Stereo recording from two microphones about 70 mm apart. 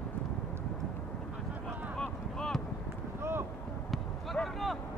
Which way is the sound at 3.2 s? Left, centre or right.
Right.